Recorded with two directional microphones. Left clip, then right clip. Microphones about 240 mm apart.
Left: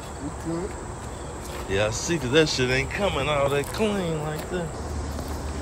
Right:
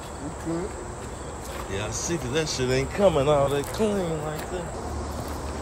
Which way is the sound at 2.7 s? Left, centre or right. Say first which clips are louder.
Right 3 dB; right.